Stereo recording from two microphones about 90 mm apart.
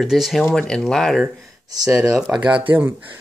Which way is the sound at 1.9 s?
30° right (ahead or behind).